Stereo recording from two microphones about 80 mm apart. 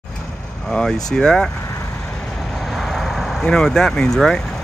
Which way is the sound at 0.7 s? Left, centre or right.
Centre.